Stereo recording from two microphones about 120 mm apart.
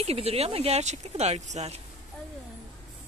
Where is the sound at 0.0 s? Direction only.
60° right (ahead or behind).